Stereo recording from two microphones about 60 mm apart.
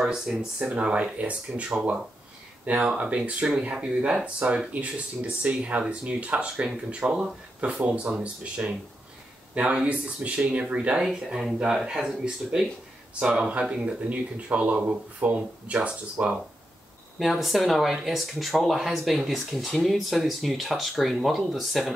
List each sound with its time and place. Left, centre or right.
0.0 s speech: centre
0.6 s speech: centre
7.0 s speech: centre
7.6 s speech: right
9.8 s speech: right
11.1 s speech: centre; by 16.3 s right
17.2 s speech: centre